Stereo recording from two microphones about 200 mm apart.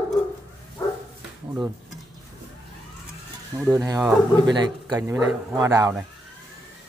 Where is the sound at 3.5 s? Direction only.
15° right (ahead or behind).